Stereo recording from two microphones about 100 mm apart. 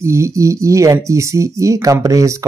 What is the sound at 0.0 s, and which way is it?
Speech, 30° right (ahead or behind).